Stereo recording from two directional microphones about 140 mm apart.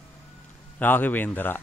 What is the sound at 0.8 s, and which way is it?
Speech, 15° left (ahead or behind).